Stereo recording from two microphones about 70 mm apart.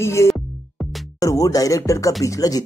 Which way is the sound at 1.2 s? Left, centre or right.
Left.